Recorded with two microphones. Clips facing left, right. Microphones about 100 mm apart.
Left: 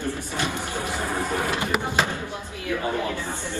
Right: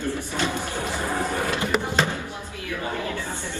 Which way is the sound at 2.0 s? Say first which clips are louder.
Even; 15° left (ahead or behind).